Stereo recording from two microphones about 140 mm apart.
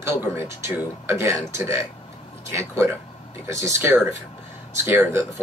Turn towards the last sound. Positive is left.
turn(degrees=-15)  # may be behind; listen again after turning